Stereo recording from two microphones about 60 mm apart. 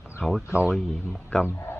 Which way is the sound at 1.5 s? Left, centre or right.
Left.